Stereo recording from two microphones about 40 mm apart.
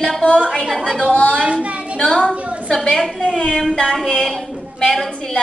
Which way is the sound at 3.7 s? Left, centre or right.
Centre.